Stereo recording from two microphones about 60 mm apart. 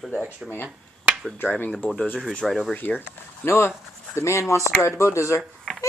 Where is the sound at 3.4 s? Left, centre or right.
Left.